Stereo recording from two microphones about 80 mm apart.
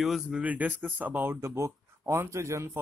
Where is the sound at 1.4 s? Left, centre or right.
Right.